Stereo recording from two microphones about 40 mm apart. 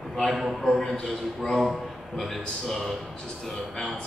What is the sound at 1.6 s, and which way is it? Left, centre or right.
A man's voice, centre.